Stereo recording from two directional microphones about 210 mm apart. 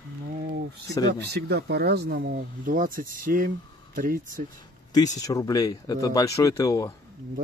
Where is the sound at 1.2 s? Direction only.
50° right (ahead or behind).